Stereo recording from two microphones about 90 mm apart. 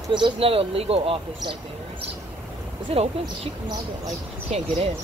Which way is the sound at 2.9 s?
90° right.